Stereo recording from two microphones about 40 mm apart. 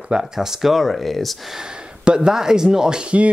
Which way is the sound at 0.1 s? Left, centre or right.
Centre.